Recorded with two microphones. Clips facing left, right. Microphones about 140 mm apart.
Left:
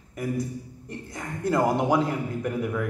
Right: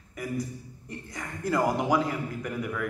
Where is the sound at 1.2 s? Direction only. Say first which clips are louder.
Left 3 dB; 25° left (ahead or behind).